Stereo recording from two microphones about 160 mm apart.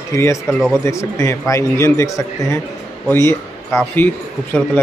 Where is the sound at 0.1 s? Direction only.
20° left (ahead or behind).